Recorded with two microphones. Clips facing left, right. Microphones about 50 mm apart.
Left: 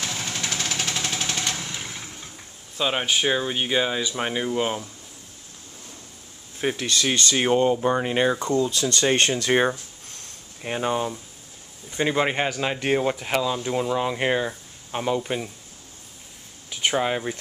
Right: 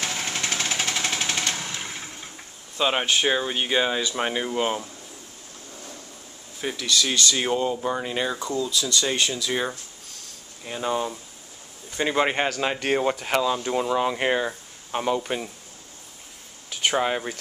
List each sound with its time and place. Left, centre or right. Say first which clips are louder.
0.2 s jackhammer: right 1 dB; right
2.8 s speech: right 1 dB; centre
6.6 s speech: left 1 dB; left
8.4 s speech: left 4 dB; left
10.8 s speech: left 1 dB; centre
12.0 s speech: even; centre
16.8 s speech: even; centre